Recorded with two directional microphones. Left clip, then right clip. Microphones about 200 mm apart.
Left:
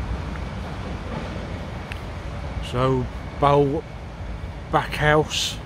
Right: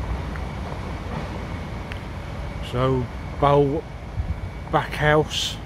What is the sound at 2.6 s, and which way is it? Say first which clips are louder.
A man's voice: left 1 dB; centre (ahead or behind).